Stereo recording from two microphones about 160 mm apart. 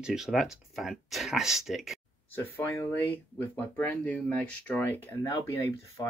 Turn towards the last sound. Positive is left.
turn(degrees=20)  # may be behind; listen again after turning